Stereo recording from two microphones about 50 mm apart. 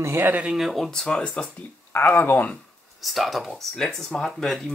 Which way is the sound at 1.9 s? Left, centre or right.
Left.